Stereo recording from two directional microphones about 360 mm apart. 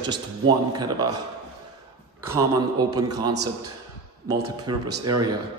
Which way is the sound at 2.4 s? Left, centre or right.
Centre.